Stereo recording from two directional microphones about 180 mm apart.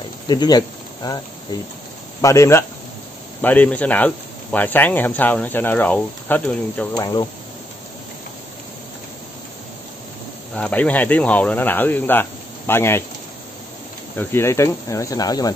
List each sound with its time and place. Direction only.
0.3 s speech: 25° left (ahead or behind)
2.2 s speech: 15° left (ahead or behind)
7.0 s speech: 20° left (ahead or behind)
10.5 s speech: 10° left (ahead or behind)
14.1 s speech: 15° left (ahead or behind)